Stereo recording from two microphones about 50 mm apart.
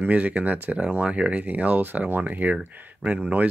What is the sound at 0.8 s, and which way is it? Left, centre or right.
Speech, right.